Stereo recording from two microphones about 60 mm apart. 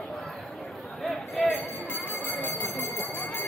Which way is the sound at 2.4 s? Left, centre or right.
Left.